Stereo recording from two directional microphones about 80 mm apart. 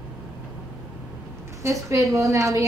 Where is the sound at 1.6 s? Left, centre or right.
Right.